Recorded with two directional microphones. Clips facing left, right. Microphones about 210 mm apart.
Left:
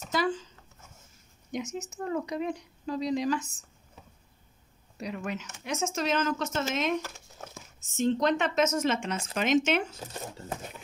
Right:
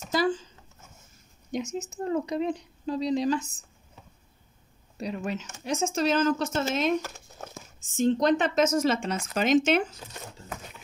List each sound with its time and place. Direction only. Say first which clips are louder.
0.1 s a sound: right 3 dB; 35° right (ahead or behind)
1.5 s a woman's voice: right 3 dB; 30° right (ahead or behind)
4.9 s speech: right 3 dB; 30° right (ahead or behind)